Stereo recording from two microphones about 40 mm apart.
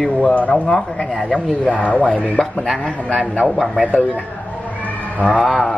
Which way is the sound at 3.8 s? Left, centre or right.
Left.